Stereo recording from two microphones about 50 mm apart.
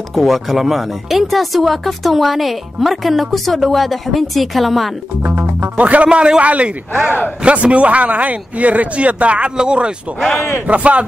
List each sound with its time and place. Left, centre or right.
0.1 s speech: centre
5.2 s speech: right
5.8 s speech: right